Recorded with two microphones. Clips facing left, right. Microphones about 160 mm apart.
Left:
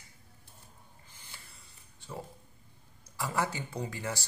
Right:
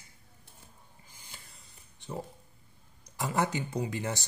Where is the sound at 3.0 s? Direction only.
20° right (ahead or behind).